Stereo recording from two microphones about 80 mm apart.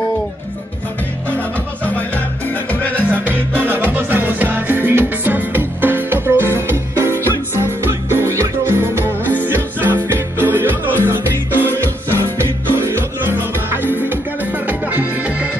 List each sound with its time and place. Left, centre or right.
2.4 s music: left
3.1 s music: right